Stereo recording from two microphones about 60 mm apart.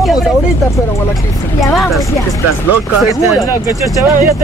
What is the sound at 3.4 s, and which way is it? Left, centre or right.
Speech, left.